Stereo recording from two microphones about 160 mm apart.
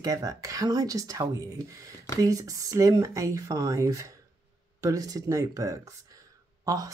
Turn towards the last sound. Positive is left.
turn(degrees=-20)  # may be behind; listen again after turning